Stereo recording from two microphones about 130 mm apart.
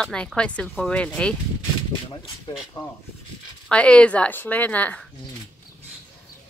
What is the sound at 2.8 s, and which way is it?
Speech, 35° left (ahead or behind).